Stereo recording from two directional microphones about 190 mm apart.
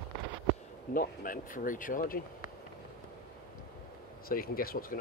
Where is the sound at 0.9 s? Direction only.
45° left (ahead or behind).